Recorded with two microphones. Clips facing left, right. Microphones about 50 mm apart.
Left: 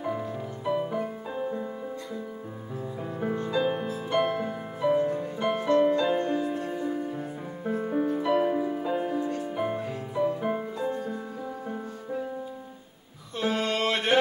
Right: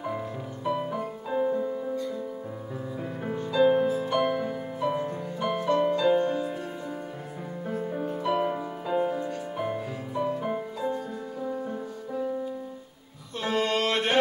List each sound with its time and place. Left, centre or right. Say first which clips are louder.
0.0 s music: left 1 dB; centre
3.5 s music: right 8 dB; centre
4.1 s music: even; centre
7.6 s music: left 4 dB; centre
8.2 s music: even; centre
13.4 s a sound: right 1 dB; centre